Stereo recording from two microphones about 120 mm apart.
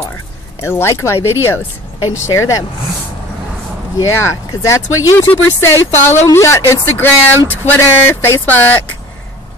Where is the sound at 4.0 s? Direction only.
25° left (ahead or behind).